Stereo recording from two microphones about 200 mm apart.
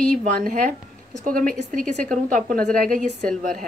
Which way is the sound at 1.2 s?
45° right (ahead or behind).